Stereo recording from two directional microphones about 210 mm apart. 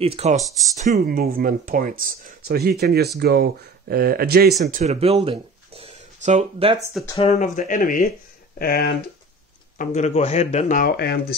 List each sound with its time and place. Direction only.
0.0 s speech: 30° right (ahead or behind); by 4.6 s 45° right (ahead or behind)
4.6 s speech: 35° right (ahead or behind)
7.2 s speech: 30° left (ahead or behind)
9.8 s speech: 35° left (ahead or behind); by 11.3 s 50° left (ahead or behind)